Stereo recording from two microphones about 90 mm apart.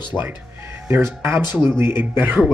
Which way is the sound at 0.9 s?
30° right (ahead or behind).